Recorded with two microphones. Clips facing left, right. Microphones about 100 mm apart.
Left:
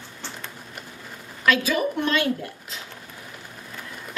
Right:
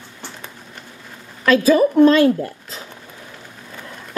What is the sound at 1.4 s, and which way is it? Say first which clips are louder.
Speech: right 8 dB; 35° right (ahead or behind).